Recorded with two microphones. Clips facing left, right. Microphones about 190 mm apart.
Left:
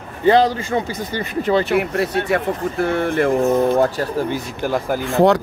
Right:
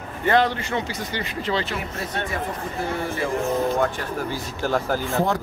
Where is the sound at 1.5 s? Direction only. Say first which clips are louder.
Left 10 dB; 70° left (ahead or behind).